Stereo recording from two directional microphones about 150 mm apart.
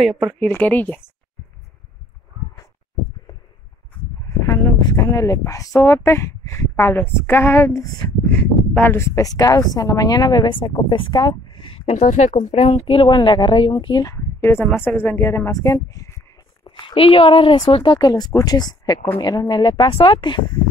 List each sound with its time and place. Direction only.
0.0 s speech: centre (ahead or behind)
0.4 s a woman's voice: 10° left (ahead or behind)
4.5 s a woman's voice: 20° left (ahead or behind)
16.6 s speech: 35° left (ahead or behind)